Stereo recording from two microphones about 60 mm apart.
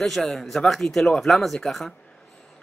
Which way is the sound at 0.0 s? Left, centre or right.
Centre.